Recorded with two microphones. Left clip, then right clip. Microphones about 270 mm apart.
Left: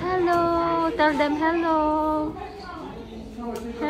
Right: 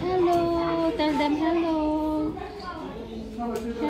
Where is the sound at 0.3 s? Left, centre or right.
Centre.